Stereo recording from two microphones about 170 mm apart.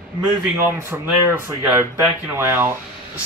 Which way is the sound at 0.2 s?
10° right (ahead or behind).